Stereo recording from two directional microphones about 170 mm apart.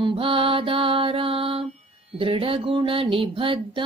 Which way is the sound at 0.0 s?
30° right (ahead or behind).